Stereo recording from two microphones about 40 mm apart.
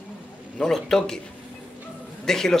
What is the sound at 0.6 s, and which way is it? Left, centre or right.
Speech, centre.